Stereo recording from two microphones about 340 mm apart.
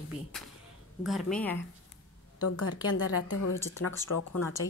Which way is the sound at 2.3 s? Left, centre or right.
Left.